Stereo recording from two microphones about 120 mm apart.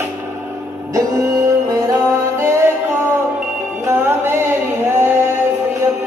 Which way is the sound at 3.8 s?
20° right (ahead or behind).